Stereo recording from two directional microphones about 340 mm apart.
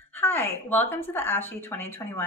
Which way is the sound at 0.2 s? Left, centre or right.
Centre.